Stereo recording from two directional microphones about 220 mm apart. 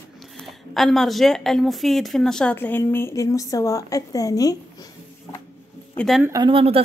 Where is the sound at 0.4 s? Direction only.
Centre (ahead or behind).